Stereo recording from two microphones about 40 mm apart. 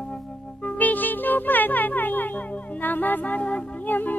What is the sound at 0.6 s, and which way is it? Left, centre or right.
Music, left.